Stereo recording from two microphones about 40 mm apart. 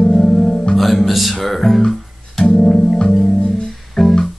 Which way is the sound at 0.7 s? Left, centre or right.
Centre.